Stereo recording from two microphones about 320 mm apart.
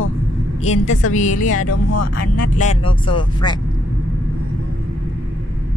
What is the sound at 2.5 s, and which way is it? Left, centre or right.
Speech, left.